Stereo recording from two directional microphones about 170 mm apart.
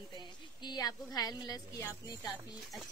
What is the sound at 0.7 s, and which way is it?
A woman's voice, 25° left (ahead or behind).